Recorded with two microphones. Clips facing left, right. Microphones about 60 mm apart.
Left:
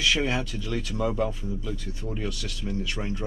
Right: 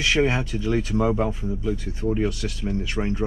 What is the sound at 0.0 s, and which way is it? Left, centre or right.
Speech, right.